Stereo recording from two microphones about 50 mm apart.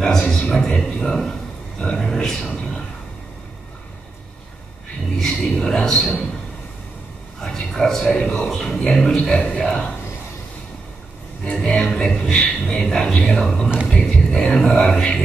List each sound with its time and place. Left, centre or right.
0.0 s speech: centre
1.0 s a man's voice: centre
5.2 s speech: centre
7.4 s a man's voice: centre; by 9.0 s left
9.0 s speech: centre
11.5 s a man's voice: left